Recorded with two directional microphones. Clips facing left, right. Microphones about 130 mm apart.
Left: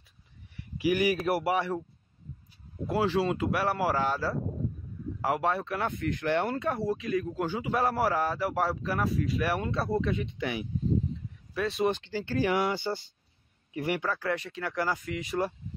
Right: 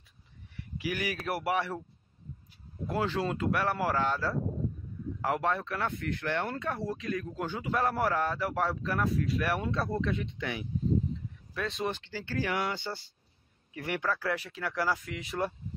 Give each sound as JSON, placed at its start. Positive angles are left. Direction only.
{"t": 0.7, "sound": "a man's voice", "side_deg": 10}
{"t": 2.9, "sound": "a man's voice", "side_deg": 5}
{"t": 11.8, "sound": "a man's voice", "side_deg": 20}
{"t": 14.0, "sound": "speech", "side_deg": 0}